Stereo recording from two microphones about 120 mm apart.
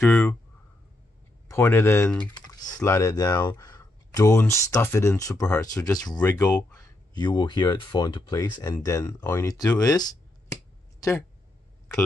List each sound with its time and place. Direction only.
0.0 s speech: 10° left (ahead or behind)
1.5 s speech: 20° left (ahead or behind)
2.3 s typing: 30° left (ahead or behind)
2.7 s speech: 25° left (ahead or behind)
7.2 s speech: 40° left (ahead or behind)
9.8 s a sound: 30° left (ahead or behind)